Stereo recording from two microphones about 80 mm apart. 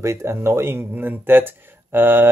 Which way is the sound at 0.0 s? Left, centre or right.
Right.